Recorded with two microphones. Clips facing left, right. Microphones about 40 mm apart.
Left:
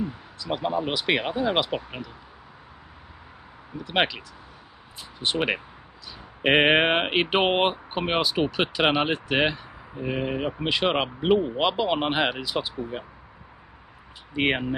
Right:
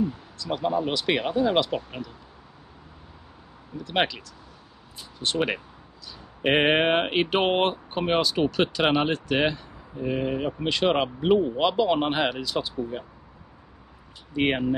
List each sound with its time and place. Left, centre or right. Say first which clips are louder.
0.0 s speech: right 4 dB; centre
3.7 s speech: left 1 dB; centre
5.2 s speech: left 1 dB; centre
14.3 s speech: even; centre